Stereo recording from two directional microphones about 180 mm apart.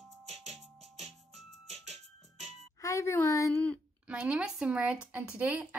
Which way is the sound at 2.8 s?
15° left (ahead or behind).